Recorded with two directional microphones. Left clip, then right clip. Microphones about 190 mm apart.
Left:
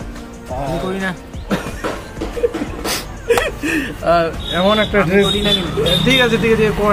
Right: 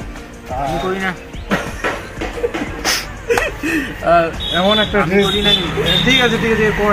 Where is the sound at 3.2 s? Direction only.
15° left (ahead or behind).